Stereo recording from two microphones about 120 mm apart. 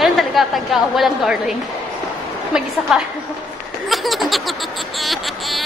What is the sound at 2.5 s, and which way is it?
Speech, 5° right (ahead or behind).